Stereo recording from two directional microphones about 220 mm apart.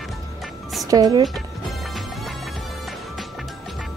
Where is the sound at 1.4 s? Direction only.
Centre (ahead or behind).